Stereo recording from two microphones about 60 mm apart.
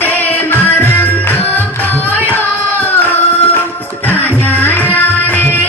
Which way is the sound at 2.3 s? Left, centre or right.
Left.